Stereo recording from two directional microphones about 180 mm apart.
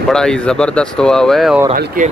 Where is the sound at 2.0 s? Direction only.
50° right (ahead or behind).